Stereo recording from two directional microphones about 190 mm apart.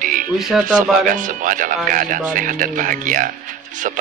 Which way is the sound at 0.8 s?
45° right (ahead or behind).